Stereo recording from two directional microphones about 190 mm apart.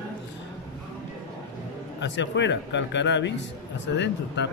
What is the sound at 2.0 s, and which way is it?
Speech, 70° left (ahead or behind).